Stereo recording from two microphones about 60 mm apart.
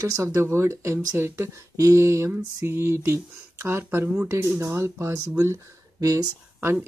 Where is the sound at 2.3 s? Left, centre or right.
Right.